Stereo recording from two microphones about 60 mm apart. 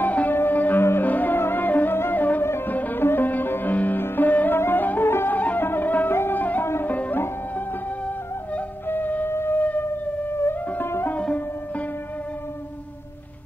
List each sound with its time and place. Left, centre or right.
0.0 s music: left
2.4 s music: left
2.7 s music: left
6.6 s music: left
6.9 s music: left
8.8 s music: left
9.3 s civil defense siren: left
10.3 s music: left
11.1 s music: left